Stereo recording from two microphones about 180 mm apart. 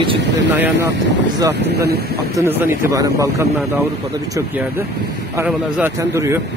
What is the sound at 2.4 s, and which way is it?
Speech, 15° right (ahead or behind).